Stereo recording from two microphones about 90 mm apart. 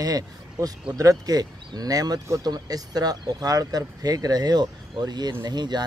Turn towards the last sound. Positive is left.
turn(degrees=-50)  # may be behind; listen again after turning